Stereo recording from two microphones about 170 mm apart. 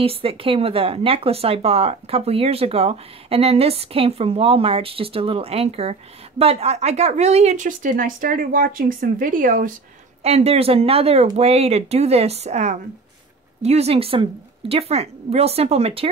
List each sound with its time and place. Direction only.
0.0 s speech: 35° right (ahead or behind); by 9.8 s 50° right (ahead or behind)
10.2 s speech: 35° right (ahead or behind)